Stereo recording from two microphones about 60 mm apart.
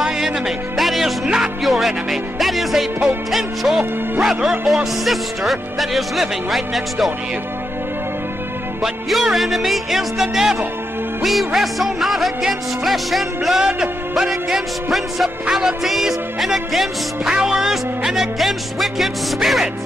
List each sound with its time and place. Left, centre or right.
0.7 s speech: centre
8.8 s speech: centre